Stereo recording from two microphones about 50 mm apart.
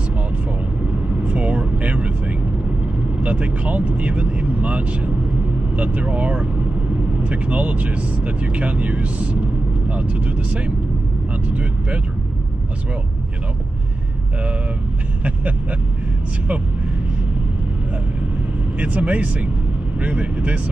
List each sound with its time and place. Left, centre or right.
1.2 s vehicle: right
3.2 s speech: right
18.8 s speech: right